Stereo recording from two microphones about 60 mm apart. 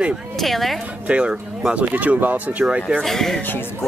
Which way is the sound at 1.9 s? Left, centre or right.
Right.